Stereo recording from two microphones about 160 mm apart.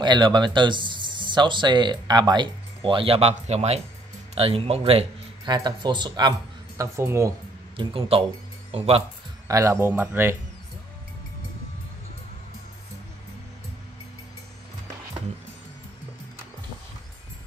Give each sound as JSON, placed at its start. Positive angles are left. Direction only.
{"t": 0.0, "sound": "speech", "side_deg": -25}
{"t": 7.7, "sound": "speech", "side_deg": -35}
{"t": 9.5, "sound": "speech", "side_deg": -20}